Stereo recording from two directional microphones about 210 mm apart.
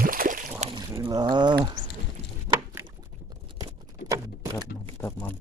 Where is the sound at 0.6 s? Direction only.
20° right (ahead or behind).